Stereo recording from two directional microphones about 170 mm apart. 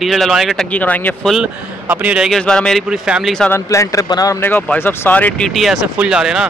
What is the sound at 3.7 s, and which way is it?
Speech, 15° left (ahead or behind).